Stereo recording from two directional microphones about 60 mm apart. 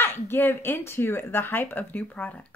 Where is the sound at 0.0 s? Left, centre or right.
Left.